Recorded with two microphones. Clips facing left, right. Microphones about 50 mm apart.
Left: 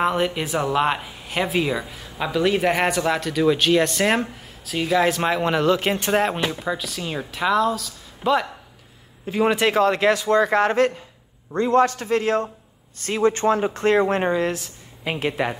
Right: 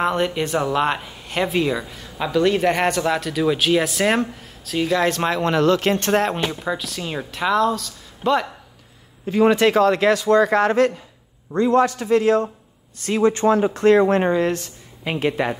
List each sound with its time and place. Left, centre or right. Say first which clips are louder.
0.0 s a man's voice: right 1 dB; centre
9.8 s a man's voice: right 2 dB; left
14.0 s a man's voice: right 3 dB; centre